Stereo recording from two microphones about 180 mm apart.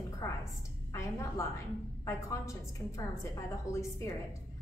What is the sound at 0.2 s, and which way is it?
Music, 15° left (ahead or behind).